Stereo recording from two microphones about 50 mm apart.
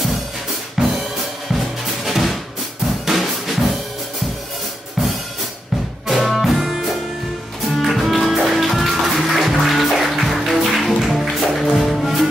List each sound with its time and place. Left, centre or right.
0.8 s drum: centre
3.1 s music: centre
6.0 s music: centre